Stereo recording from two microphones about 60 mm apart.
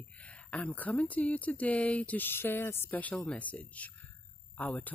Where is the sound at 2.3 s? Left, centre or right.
Left.